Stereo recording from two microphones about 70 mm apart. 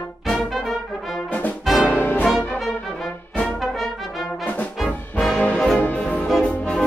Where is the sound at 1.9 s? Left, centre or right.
Left.